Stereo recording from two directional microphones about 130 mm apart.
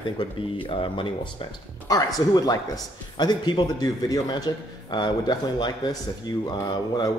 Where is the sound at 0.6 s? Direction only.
40° left (ahead or behind).